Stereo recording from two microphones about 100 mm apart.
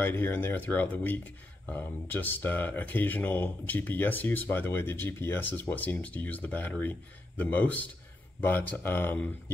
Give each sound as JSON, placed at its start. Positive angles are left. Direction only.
{"t": 0.0, "sound": "speech", "side_deg": 20}